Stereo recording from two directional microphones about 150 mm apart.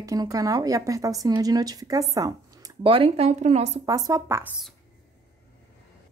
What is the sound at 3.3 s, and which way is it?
Speech, 50° right (ahead or behind).